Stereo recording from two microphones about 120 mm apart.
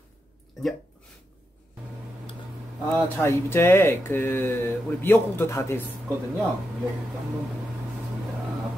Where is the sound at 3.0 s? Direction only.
20° left (ahead or behind).